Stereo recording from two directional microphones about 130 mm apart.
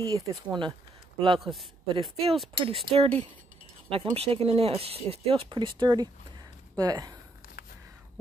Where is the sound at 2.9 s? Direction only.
50° right (ahead or behind); by 7.1 s 30° right (ahead or behind).